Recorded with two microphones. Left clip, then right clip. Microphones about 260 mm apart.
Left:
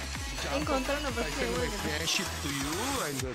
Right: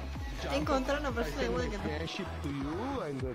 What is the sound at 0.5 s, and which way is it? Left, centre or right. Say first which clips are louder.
Speech: even; centre.